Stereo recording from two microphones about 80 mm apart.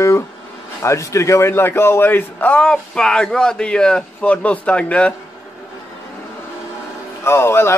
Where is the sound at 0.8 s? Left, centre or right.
Left; by 5.1 s centre.